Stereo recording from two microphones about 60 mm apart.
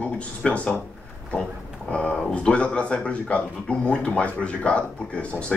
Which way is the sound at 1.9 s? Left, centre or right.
Centre.